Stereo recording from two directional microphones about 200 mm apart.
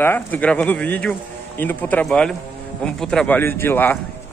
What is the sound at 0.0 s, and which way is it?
A man's voice, 10° left (ahead or behind).